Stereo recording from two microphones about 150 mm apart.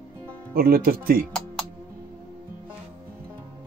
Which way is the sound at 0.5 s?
80° right.